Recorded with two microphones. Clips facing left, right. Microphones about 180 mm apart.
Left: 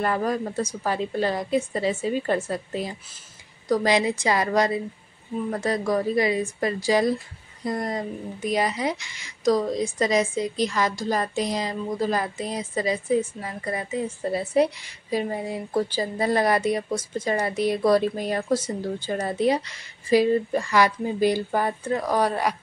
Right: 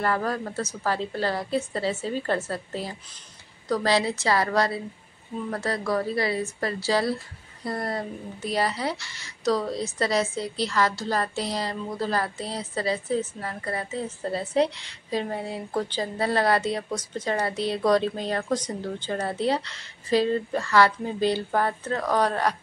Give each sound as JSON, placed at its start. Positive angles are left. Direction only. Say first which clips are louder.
{"t": 0.0, "sound": "a woman's voice", "louder": "left 2 dB", "side_deg": 20}